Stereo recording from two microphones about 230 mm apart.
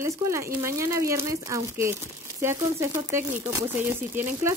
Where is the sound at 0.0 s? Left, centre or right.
Centre.